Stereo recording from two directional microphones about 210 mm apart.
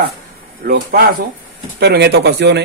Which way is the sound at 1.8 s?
50° right (ahead or behind).